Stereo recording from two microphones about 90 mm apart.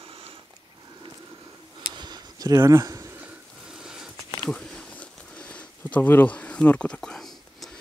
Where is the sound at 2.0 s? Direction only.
50° right (ahead or behind).